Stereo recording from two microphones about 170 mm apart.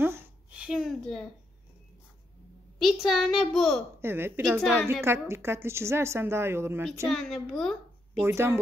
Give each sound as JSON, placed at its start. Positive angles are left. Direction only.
{"t": 0.0, "sound": "a sound", "side_deg": -10}
{"t": 2.8, "sound": "a child's voice", "side_deg": 0}
{"t": 4.0, "sound": "a woman's voice", "side_deg": -15}
{"t": 4.4, "sound": "a child's voice", "side_deg": 0}
{"t": 5.0, "sound": "a woman's voice", "side_deg": -15}
{"t": 7.1, "sound": "a child's voice", "side_deg": 0}
{"t": 8.2, "sound": "a woman's voice", "side_deg": -15}